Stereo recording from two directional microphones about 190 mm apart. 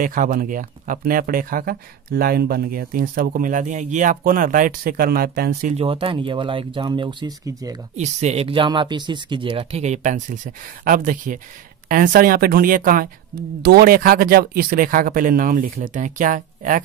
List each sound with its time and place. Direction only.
0.0 s speech: 45° right (ahead or behind)
5.8 s speech: 30° right (ahead or behind)
7.9 s speech: 35° right (ahead or behind)